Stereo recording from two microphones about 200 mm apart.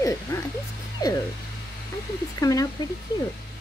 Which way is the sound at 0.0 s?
15° left (ahead or behind).